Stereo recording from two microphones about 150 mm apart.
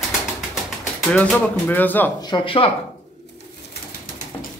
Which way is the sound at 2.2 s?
35° left (ahead or behind).